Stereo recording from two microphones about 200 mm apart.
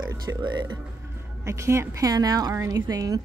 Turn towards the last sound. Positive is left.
turn(degrees=-20)  # may be behind; listen again after turning